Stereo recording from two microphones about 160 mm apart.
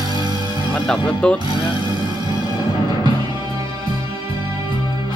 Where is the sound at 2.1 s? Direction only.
25° right (ahead or behind).